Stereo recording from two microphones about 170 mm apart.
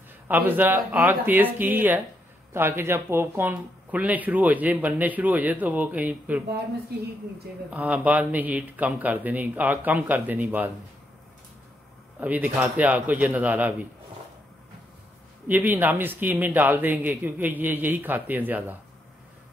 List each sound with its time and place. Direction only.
0.3 s speech: 10° right (ahead or behind)
6.9 s a woman's voice: 65° right (ahead or behind)
7.7 s speech: 10° right (ahead or behind)
12.2 s speech: 10° right (ahead or behind)
15.4 s speech: 10° right (ahead or behind)